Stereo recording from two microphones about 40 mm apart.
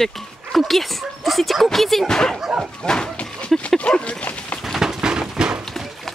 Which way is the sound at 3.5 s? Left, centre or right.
Centre.